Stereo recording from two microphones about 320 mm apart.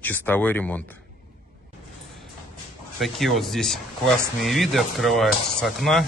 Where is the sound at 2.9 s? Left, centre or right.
Centre.